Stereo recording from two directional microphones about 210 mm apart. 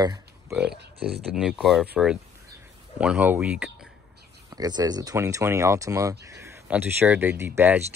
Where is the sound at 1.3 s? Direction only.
Centre (ahead or behind).